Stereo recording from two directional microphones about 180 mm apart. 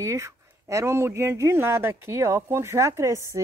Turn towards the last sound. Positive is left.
turn(degrees=-15)  # may be behind; listen again after turning